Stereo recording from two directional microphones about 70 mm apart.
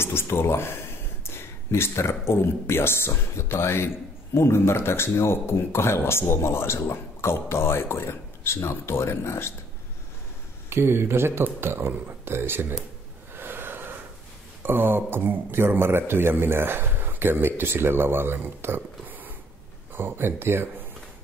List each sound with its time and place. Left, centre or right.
0.0 s speech: left
10.7 s speech: right
13.3 s snort: right
14.6 s speech: right